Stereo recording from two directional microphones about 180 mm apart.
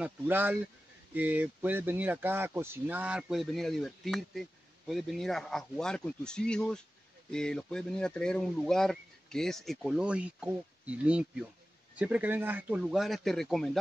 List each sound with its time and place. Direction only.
0.0 s speech: 10° right (ahead or behind)